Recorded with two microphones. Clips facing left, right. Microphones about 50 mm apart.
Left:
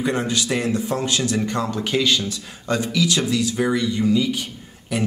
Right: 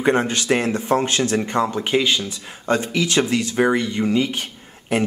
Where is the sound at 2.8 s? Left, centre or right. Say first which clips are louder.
Right 1 dB; right.